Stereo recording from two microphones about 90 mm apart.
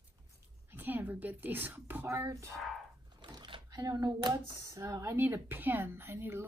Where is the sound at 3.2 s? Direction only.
55° right (ahead or behind).